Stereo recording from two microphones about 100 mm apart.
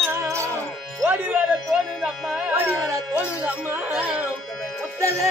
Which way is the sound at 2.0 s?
15° right (ahead or behind).